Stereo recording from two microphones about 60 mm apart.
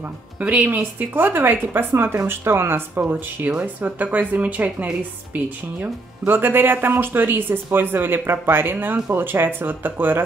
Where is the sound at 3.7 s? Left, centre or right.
Right.